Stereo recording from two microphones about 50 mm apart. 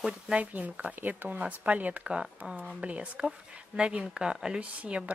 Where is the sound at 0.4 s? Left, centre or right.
Right.